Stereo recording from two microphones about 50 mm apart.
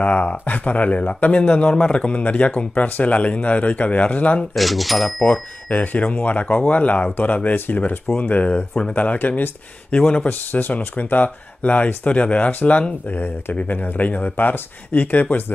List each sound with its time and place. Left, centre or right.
0.0 s speech: left
4.6 s speech: centre
5.2 s speech: left
8.2 s speech: left
10.2 s speech: left
13.1 s speech: left